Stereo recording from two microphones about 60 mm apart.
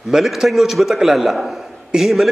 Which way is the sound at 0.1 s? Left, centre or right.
Centre.